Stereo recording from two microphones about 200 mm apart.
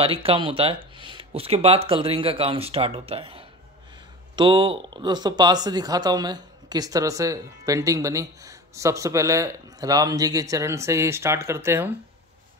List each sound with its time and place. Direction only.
0.0 s speech: 30° right (ahead or behind); by 11.9 s 15° right (ahead or behind)